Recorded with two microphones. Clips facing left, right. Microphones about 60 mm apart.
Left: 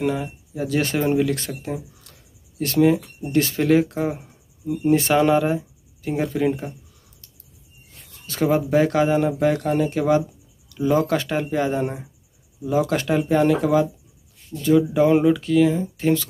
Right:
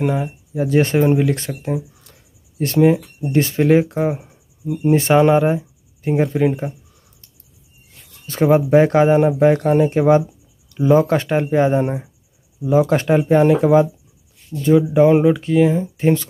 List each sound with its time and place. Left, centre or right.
0.0 s speech: right
8.5 s speech: right